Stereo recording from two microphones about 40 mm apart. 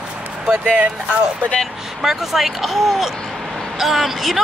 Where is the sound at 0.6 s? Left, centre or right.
Right.